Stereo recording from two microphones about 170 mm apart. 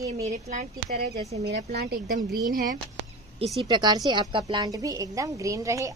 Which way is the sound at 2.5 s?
55° right (ahead or behind).